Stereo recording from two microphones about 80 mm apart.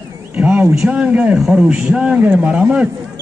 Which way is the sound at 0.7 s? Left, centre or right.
Centre.